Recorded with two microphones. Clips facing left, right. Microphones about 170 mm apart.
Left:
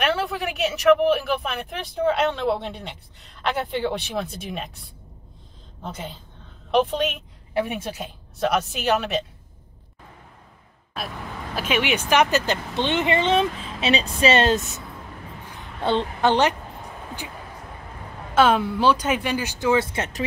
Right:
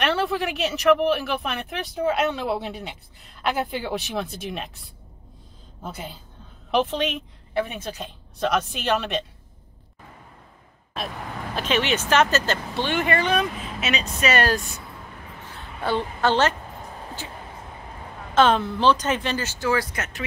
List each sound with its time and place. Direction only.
0.0 s speech: 5° left (ahead or behind)
5.9 s a woman's voice: 5° right (ahead or behind)
11.5 s a woman's voice: 10° left (ahead or behind)
18.3 s speech: 10° left (ahead or behind); by 20.2 s 35° left (ahead or behind)